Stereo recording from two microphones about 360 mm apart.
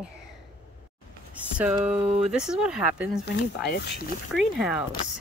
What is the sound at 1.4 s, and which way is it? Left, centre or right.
Speech, centre.